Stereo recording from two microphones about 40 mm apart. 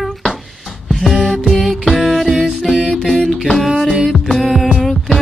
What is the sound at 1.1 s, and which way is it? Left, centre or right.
Music, centre.